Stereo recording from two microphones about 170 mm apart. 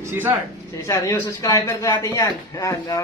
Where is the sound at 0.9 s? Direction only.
15° left (ahead or behind).